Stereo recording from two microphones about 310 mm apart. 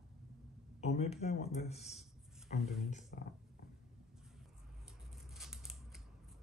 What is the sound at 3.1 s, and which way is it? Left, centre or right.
Speech, left.